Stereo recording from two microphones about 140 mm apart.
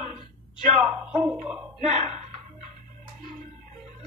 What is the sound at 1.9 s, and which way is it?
Speech, 55° right (ahead or behind).